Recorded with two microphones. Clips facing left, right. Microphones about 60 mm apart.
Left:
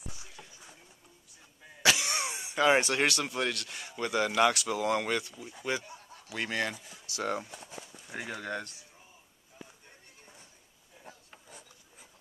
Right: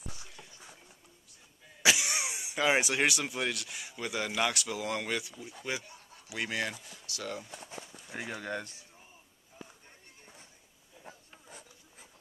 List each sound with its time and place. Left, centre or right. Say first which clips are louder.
0.4 s a sound: left 2 dB; centre
1.8 s speech: left 1 dB; centre
7.1 s speech: left 6 dB; left
8.3 s speech: left 1 dB; centre